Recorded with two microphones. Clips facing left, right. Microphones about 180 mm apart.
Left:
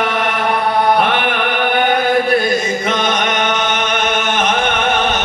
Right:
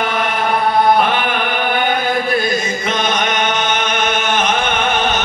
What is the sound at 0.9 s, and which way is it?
Music, 70° left (ahead or behind).